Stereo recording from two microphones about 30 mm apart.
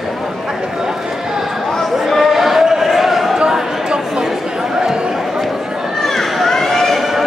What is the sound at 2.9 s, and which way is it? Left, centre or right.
Basketball bounce, centre.